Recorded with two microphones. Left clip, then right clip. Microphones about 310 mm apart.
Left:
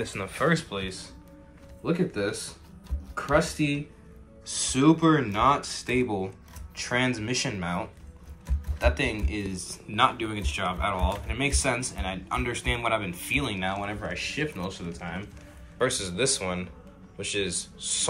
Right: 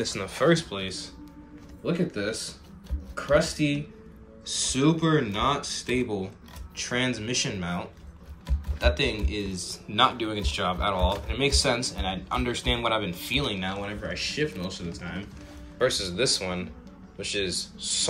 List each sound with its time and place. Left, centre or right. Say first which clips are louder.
0.0 s speech: right 3 dB; centre